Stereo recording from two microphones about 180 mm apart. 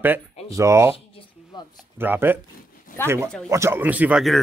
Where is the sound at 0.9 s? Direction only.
25° left (ahead or behind).